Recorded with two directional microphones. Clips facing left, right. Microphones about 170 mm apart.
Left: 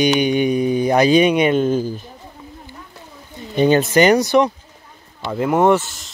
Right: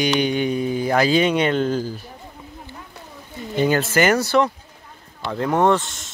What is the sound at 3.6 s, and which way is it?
Speech, 20° left (ahead or behind).